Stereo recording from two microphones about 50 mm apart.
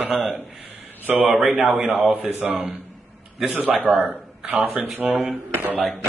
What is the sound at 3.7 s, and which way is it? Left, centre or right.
Speech, right.